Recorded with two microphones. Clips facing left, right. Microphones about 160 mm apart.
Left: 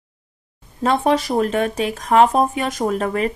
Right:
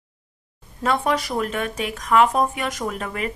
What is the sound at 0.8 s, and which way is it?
Speech, 30° left (ahead or behind).